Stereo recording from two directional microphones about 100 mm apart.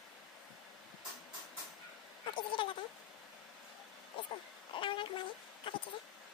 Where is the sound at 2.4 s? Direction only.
55° left (ahead or behind).